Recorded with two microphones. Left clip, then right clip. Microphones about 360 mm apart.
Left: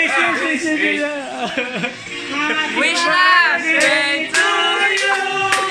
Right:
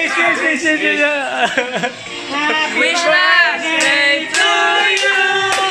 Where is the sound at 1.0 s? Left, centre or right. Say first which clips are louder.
Right 7 dB; right.